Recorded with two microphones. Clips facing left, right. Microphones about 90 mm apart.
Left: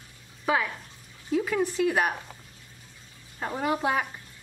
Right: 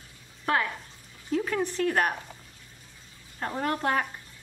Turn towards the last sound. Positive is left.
turn(degrees=5)  # may be behind; listen again after turning